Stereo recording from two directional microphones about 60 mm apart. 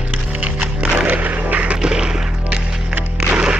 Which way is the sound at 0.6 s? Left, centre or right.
Right.